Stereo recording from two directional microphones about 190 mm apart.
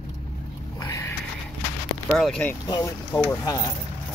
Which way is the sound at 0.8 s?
15° left (ahead or behind).